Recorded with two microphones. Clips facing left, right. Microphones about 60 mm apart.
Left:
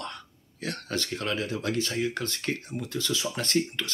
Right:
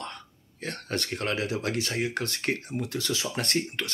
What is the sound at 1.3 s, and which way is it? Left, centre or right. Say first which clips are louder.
Speech: even; right.